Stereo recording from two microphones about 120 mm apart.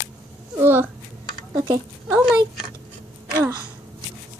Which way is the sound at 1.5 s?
35° right (ahead or behind).